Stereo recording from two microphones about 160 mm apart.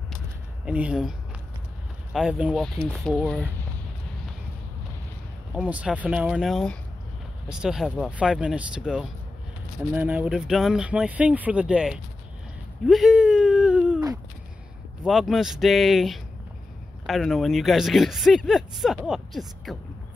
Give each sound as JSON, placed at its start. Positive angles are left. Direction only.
{"t": 0.7, "sound": "speech", "side_deg": -5}
{"t": 2.1, "sound": "speech", "side_deg": -5}
{"t": 5.5, "sound": "speech", "side_deg": -10}
{"t": 15.0, "sound": "speech", "side_deg": 0}